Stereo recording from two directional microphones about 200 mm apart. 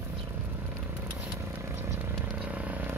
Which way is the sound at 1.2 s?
10° right (ahead or behind).